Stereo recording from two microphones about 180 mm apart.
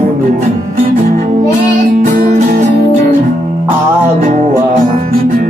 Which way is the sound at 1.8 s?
50° right (ahead or behind).